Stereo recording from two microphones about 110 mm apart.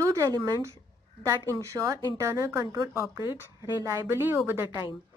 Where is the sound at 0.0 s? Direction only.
30° right (ahead or behind).